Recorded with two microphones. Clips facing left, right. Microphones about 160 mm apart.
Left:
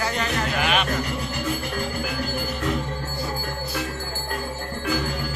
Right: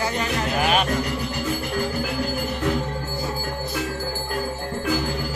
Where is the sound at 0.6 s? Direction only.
40° right (ahead or behind).